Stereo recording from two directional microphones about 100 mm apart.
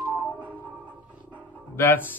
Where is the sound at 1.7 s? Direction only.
20° left (ahead or behind).